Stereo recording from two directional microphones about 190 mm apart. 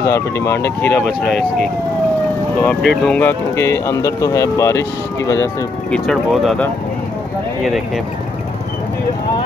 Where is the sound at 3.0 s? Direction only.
5° left (ahead or behind).